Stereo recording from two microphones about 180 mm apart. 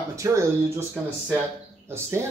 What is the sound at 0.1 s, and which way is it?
Speech, 15° right (ahead or behind).